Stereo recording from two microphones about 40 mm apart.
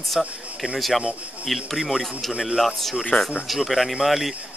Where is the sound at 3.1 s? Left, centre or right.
Left.